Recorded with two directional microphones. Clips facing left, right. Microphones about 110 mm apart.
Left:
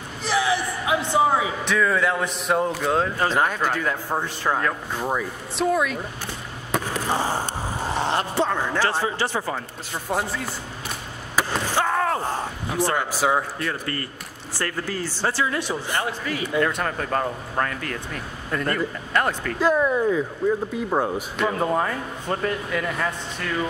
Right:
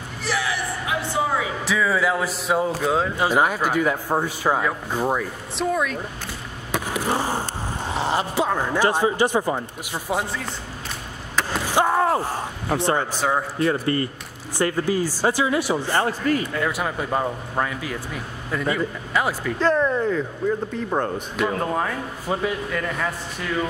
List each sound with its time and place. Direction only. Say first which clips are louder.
0.2 s a sound: left 3 dB; 20° left (ahead or behind)
1.6 s speech: even; 5° right (ahead or behind)
5.6 s speech: left 1 dB; centre (ahead or behind)
6.7 s skateboard: left 1 dB; centre (ahead or behind)
7.8 s speech: right 1 dB; centre (ahead or behind)
11.7 s a sound: right 4 dB; 20° right (ahead or behind)
12.7 s a man's voice: right 2 dB; 25° right (ahead or behind)
13.1 s speech: left 1 dB; 5° left (ahead or behind)
13.6 s a man's voice: right 7 dB; 25° right (ahead or behind)
16.0 s speech: right 5 dB; 45° right (ahead or behind)
16.5 s speech: left 1 dB; 5° right (ahead or behind)
19.6 s speech: even; 10° left (ahead or behind)